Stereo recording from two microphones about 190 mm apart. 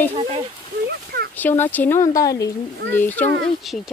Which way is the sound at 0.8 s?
55° right (ahead or behind).